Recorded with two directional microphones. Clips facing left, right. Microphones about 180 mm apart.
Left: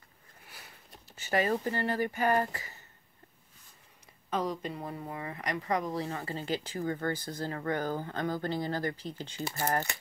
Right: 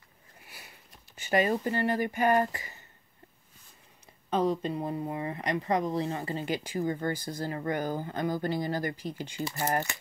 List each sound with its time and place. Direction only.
1.1 s speech: 20° right (ahead or behind)
4.3 s speech: 25° right (ahead or behind); by 9.4 s 10° right (ahead or behind)